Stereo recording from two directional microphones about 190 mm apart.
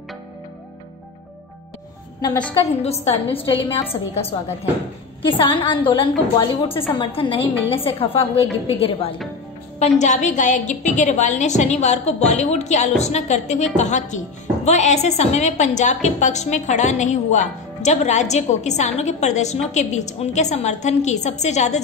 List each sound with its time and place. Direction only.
2.2 s a woman's voice: 20° left (ahead or behind)
2.8 s a woman's voice: 35° left (ahead or behind)
5.2 s a woman's voice: 25° left (ahead or behind)